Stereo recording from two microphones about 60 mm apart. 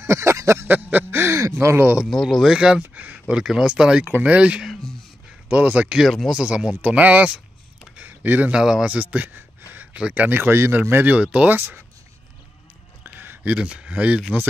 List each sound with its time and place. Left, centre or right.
0.0 s a sound: right
0.7 s a sound: right
1.4 s speech: right
2.0 s speech: centre
2.5 s speech: centre
2.8 s speech: right
3.3 s speech: centre
8.1 s a sound: right
8.5 s speech: centre
8.8 s speech: right
11.1 s speech: right
11.5 s speech: right
13.0 s speech: right